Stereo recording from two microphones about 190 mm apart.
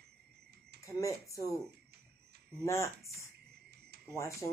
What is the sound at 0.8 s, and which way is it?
Speech, 15° left (ahead or behind).